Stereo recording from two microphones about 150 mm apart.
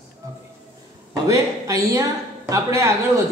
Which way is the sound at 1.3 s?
20° right (ahead or behind).